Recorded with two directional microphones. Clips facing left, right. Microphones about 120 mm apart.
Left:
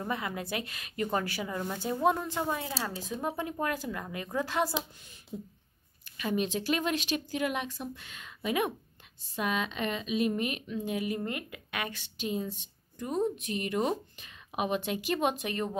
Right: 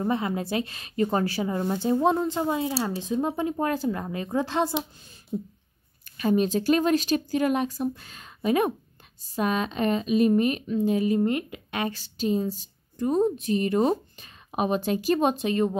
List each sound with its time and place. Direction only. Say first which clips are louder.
0.0 s a woman's voice: right 8 dB; 30° right (ahead or behind)